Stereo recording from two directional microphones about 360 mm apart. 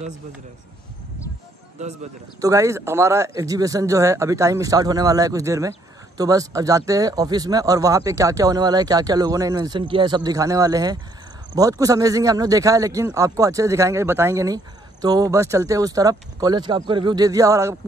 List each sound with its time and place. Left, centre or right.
1.8 s speech: centre